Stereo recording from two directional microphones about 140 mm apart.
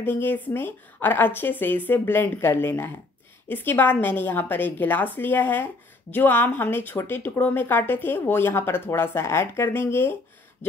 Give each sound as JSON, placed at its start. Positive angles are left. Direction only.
{"t": 0.0, "sound": "speech", "side_deg": 15}